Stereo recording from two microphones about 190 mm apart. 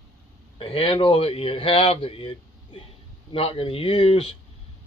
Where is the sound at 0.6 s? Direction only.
30° left (ahead or behind).